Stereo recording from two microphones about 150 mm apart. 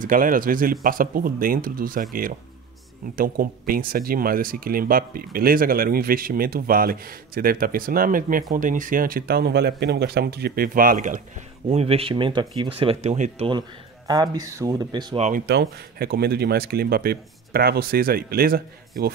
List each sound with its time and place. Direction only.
0.0 s speech: 65° right (ahead or behind)
3.2 s speech: 75° right (ahead or behind)
11.7 s speech: 45° right (ahead or behind)
13.6 s speech: 25° right (ahead or behind)
15.1 s speech: 50° right (ahead or behind)
15.4 s speech: 90° right